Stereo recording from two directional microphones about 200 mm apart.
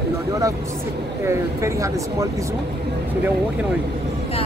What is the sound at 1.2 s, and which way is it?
Speech, 15° right (ahead or behind).